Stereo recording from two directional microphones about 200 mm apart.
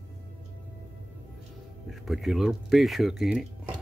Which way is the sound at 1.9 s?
Centre (ahead or behind).